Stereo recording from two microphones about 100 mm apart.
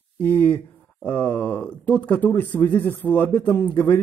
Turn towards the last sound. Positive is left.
turn(degrees=20)  # may be behind; listen again after turning